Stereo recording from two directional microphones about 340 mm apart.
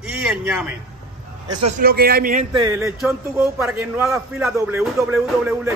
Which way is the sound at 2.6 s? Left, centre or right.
Centre.